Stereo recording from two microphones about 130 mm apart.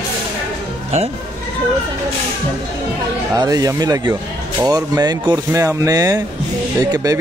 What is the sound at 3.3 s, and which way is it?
Speech, 30° right (ahead or behind).